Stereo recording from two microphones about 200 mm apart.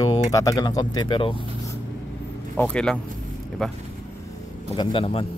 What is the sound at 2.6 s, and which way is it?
Speech, 5° left (ahead or behind).